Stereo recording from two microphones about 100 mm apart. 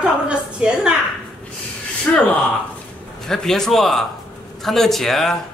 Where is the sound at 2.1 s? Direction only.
15° left (ahead or behind).